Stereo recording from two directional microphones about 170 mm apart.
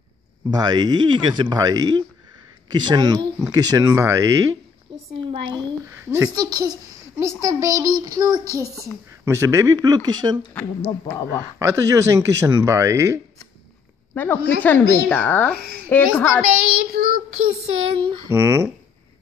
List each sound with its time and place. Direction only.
0.5 s speech: 25° right (ahead or behind)
4.9 s a sound: 25° right (ahead or behind)
5.3 s speech: 30° right (ahead or behind)
10.5 s speech: 5° left (ahead or behind)
11.6 s speech: 15° right (ahead or behind)
14.1 s speech: 10° left (ahead or behind)
16.9 s child singing: 55° right (ahead or behind)
17.7 s speech: 40° right (ahead or behind)
18.3 s speech: 15° right (ahead or behind)